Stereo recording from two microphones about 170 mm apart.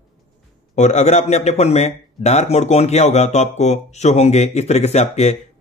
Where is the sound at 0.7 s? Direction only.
40° left (ahead or behind).